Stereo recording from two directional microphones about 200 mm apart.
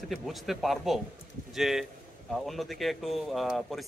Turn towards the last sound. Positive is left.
turn(degrees=0)  # may be behind; listen again after turning